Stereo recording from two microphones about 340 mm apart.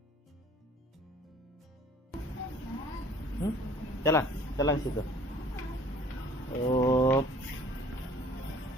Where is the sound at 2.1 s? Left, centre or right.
Centre.